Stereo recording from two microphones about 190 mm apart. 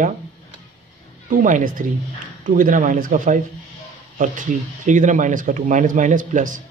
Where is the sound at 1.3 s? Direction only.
45° right (ahead or behind).